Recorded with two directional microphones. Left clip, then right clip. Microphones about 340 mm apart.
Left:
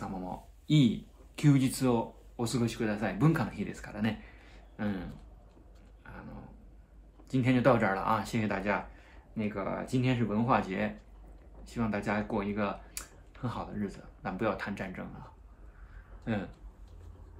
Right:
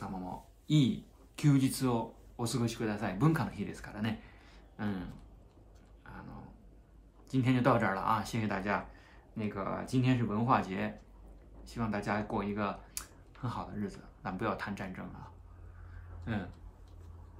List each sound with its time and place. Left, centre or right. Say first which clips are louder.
0.0 s speech: left 2 dB; centre
6.0 s a sound: left 1 dB; centre
7.2 s speech: left 3 dB; centre
16.3 s speech: left 4 dB; centre